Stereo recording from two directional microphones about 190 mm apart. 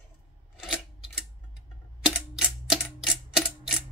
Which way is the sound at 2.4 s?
Centre (ahead or behind).